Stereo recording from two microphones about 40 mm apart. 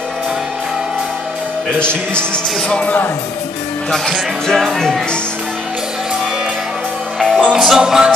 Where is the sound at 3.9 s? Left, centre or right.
Centre.